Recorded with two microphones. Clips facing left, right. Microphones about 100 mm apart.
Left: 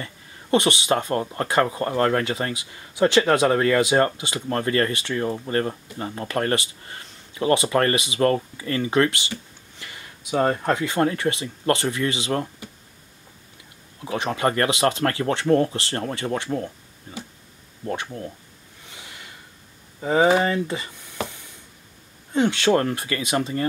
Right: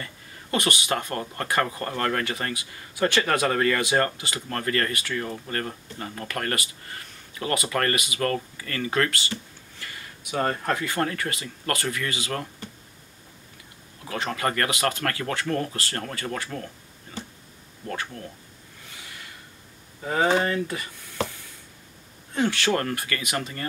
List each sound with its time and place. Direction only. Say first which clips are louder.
0.0 s speech: left 2 dB; 25° left (ahead or behind)
14.0 s speech: left 4 dB; 20° left (ahead or behind)
17.8 s speech: left 4 dB; 25° left (ahead or behind)
18.9 s snort: left 1 dB; 20° left (ahead or behind)
20.0 s a sound: left 4 dB; 15° left (ahead or behind)
22.3 s speech: left 5 dB; 20° left (ahead or behind)